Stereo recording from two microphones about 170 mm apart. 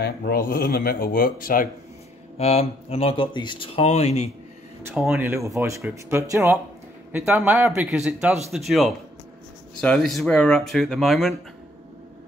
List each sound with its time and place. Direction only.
0.0 s speech: 65° left (ahead or behind)
2.3 s speech: 35° left (ahead or behind)
4.8 s a man's voice: 10° right (ahead or behind)